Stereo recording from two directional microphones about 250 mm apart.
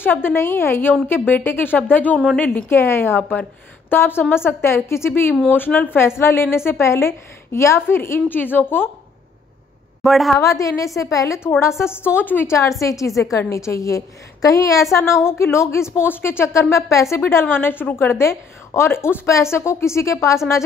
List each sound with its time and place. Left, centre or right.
0.0 s a woman's voice: centre
10.0 s a woman's voice: centre
10.4 s a woman's voice: centre